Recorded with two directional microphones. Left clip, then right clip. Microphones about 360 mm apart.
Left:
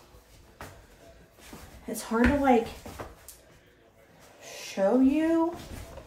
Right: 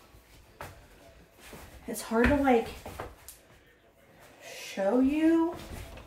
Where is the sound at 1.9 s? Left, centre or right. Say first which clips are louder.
Even; centre.